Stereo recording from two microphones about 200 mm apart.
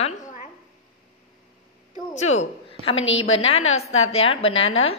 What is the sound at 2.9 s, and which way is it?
Speech, 75° left (ahead or behind).